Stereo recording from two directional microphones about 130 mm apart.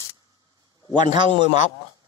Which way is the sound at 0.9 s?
35° right (ahead or behind).